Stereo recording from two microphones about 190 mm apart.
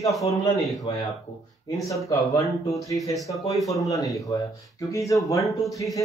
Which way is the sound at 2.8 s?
20° left (ahead or behind).